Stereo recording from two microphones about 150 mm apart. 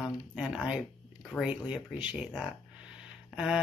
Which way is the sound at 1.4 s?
5° right (ahead or behind).